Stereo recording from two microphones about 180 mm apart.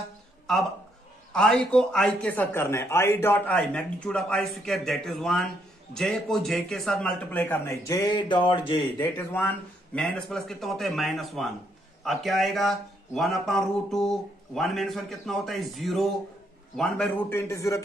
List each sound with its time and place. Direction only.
1.3 s a man's voice: 5° left (ahead or behind); by 8.8 s 25° left (ahead or behind)
9.1 s a man's voice: 10° left (ahead or behind)